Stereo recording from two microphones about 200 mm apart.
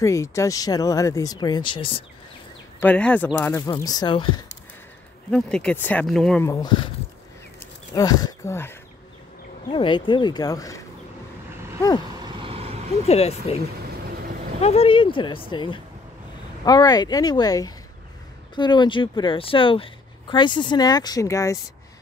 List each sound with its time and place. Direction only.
0.0 s speech: 15° left (ahead or behind)
2.8 s speech: 5° left (ahead or behind); by 4.3 s 25° left (ahead or behind)
5.3 s speech: 5° left (ahead or behind)
6.4 s speech: 20° left (ahead or behind)
7.9 s speech: 20° left (ahead or behind)
9.7 s speech: 25° left (ahead or behind)
12.2 s vehicle: 25° right (ahead or behind)
13.0 s speech: 30° left (ahead or behind)
14.6 s speech: 30° left (ahead or behind)